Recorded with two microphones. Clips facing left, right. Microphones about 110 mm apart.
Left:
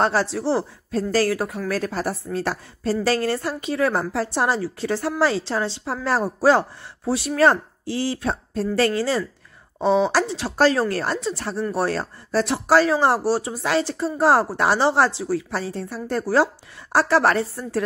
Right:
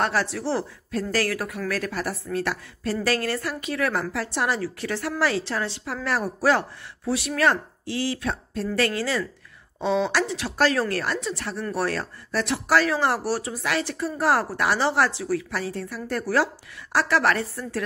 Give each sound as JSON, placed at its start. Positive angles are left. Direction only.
{"t": 0.0, "sound": "speech", "side_deg": 30}